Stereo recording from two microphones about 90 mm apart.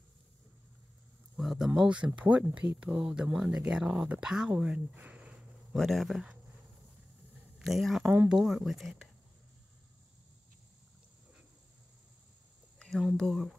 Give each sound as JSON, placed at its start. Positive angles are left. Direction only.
{"t": 1.3, "sound": "speech", "side_deg": -5}
{"t": 5.8, "sound": "speech", "side_deg": 0}
{"t": 7.5, "sound": "speech", "side_deg": 0}
{"t": 8.0, "sound": "speech", "side_deg": -25}
{"t": 8.3, "sound": "speech", "side_deg": -5}
{"t": 12.7, "sound": "a sound", "side_deg": 5}
{"t": 13.2, "sound": "speech", "side_deg": 0}